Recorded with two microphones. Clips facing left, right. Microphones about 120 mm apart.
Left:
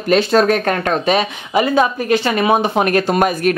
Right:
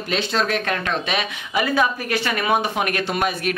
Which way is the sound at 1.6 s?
25° left (ahead or behind).